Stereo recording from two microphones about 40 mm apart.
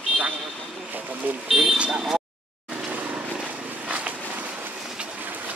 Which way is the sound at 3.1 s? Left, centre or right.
Right.